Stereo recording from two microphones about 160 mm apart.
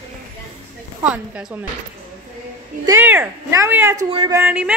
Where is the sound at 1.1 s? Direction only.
10° right (ahead or behind).